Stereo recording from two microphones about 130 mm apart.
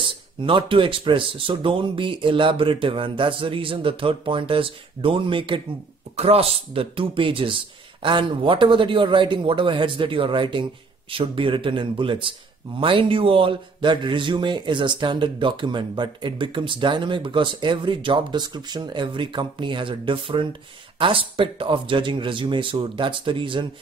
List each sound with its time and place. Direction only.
0.0 s a man's voice: 40° right (ahead or behind)